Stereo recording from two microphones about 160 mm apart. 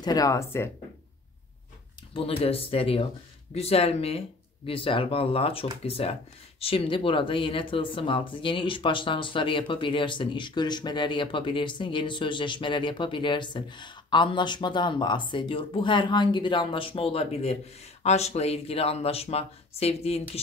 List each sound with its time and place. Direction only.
0.0 s speech: 25° left (ahead or behind)
2.1 s speech: 35° left (ahead or behind)